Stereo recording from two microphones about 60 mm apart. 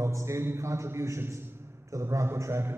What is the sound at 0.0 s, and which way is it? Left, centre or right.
A man's voice, right.